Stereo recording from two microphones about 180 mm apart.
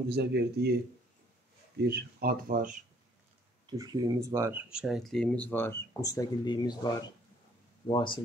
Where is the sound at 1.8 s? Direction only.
60° right (ahead or behind).